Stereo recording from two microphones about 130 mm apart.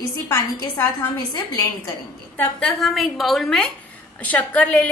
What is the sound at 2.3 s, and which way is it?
Speech, 15° left (ahead or behind).